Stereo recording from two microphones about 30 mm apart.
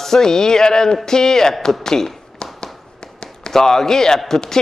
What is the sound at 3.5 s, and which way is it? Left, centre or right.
Speech, centre.